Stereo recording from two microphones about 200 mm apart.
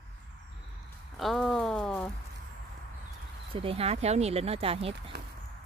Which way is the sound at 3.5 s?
30° right (ahead or behind).